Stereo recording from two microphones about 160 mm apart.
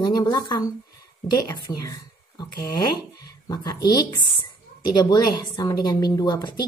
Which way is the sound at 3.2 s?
25° left (ahead or behind).